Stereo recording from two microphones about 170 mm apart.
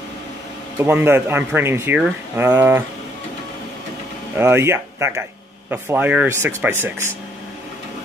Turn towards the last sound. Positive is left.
turn(degrees=-15)  # may be behind; listen again after turning